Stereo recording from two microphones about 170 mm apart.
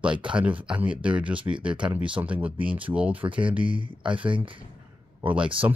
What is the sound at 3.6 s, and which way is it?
Speech, 30° right (ahead or behind).